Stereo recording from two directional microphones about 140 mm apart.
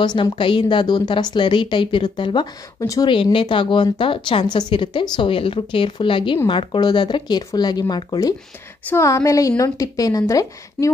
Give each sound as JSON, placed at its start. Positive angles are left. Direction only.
{"t": 0.0, "sound": "a woman's voice", "side_deg": 35}
{"t": 3.1, "sound": "a woman's voice", "side_deg": 35}